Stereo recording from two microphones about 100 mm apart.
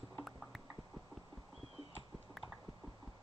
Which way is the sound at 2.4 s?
Centre (ahead or behind).